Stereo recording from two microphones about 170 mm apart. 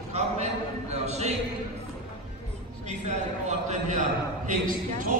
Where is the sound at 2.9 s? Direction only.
45° right (ahead or behind).